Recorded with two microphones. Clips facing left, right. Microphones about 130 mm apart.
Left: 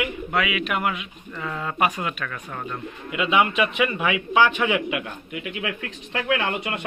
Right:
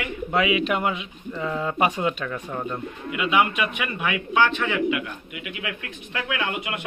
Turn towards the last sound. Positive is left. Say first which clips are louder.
# left 3 dB
turn(degrees=35)  # may be behind; listen again after turning